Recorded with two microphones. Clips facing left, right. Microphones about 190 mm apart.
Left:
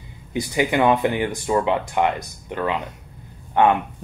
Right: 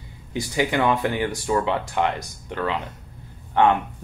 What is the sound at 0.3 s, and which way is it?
Speech, 15° left (ahead or behind).